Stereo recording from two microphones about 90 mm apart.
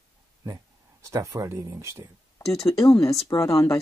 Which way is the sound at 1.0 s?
35° right (ahead or behind).